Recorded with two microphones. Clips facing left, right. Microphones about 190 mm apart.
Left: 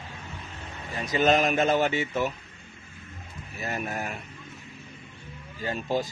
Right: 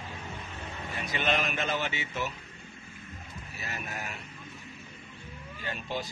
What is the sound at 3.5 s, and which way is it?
Speech, 50° left (ahead or behind).